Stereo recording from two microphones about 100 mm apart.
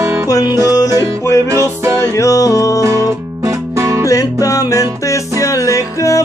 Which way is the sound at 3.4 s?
30° right (ahead or behind).